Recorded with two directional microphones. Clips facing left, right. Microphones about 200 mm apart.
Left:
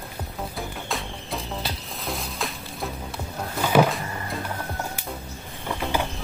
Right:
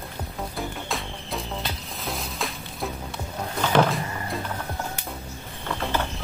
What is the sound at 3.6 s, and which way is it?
Power windows, 10° left (ahead or behind).